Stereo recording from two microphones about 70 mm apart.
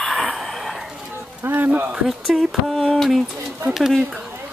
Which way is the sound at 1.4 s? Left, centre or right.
Right.